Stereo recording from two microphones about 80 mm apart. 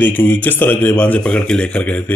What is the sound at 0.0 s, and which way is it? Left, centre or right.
Speech, left.